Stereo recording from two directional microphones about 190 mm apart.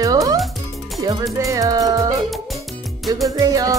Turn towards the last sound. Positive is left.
turn(degrees=-20)  # may be behind; listen again after turning